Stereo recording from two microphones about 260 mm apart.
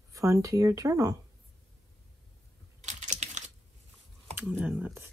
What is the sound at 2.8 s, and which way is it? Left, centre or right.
Computer keyboard, right.